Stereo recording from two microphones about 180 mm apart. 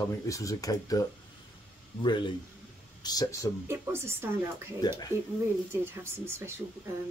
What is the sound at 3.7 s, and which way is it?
Speech, 15° right (ahead or behind).